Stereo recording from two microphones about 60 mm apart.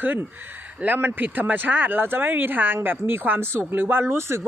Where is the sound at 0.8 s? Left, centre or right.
Right.